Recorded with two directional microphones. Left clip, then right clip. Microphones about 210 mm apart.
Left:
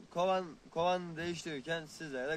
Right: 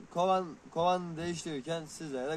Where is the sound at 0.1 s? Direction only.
5° left (ahead or behind).